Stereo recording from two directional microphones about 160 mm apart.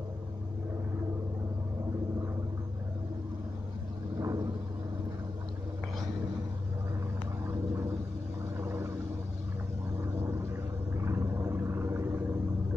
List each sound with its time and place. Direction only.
4.2 s vehicle: 20° right (ahead or behind)
8.5 s vehicle: 15° right (ahead or behind)
10.2 s whale vocalization: 15° right (ahead or behind)